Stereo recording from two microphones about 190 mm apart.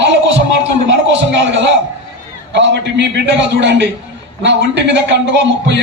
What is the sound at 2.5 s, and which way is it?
A man's voice, 65° right (ahead or behind).